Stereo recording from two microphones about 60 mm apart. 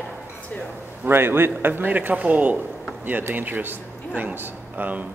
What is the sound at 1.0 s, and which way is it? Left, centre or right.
Speech, right.